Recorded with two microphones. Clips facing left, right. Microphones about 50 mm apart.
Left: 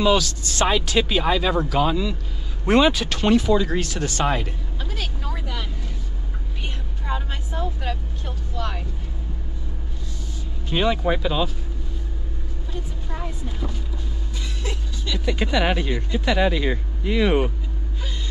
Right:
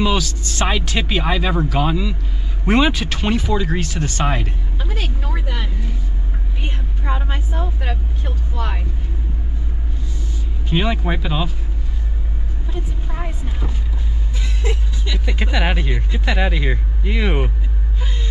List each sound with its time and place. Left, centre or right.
0.0 s speech: centre
4.7 s vehicle: right
10.7 s speech: centre
14.6 s speech: centre